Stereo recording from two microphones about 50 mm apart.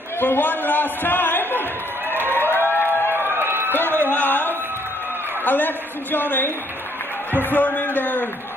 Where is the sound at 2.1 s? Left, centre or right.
Right.